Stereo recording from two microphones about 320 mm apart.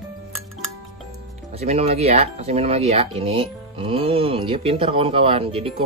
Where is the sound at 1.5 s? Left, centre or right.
Centre.